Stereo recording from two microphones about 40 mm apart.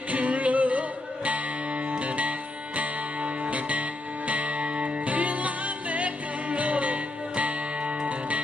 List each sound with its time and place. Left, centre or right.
0.1 s music: right